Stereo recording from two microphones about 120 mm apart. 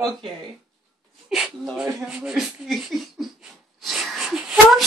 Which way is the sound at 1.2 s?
5° right (ahead or behind).